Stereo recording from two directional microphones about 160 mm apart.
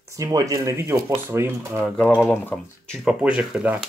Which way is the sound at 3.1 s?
5° right (ahead or behind).